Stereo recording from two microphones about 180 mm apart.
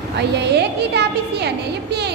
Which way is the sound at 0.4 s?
70° right (ahead or behind).